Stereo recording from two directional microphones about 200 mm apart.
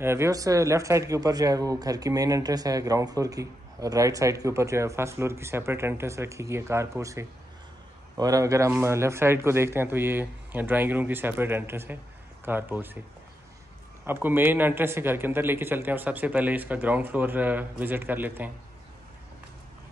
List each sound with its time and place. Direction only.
0.0 s a man's voice: 15° right (ahead or behind)
14.0 s a man's voice: 10° right (ahead or behind)